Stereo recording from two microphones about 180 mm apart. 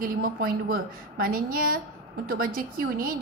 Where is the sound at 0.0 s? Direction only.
55° right (ahead or behind).